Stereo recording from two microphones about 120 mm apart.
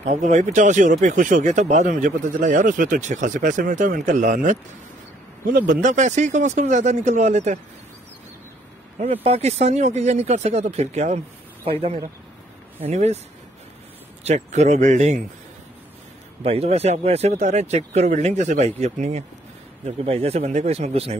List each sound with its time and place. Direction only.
0.0 s speech: 85° right
5.8 s speech: 90° right; by 7.6 s 70° right (ahead or behind)
9.0 s speech: 60° right (ahead or behind)
11.7 s speech: 50° right (ahead or behind)
12.8 s speech: 65° right (ahead or behind)
14.2 s speech: 70° right (ahead or behind)
16.4 s speech: 60° right (ahead or behind)
20.0 s speech: 60° right (ahead or behind)